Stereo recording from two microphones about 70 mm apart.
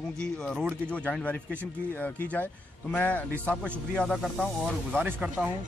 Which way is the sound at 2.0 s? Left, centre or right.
Left.